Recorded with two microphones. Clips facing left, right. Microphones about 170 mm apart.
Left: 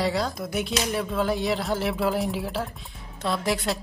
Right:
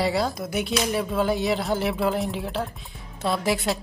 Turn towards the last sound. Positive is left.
turn(degrees=0)  # may be behind; listen again after turning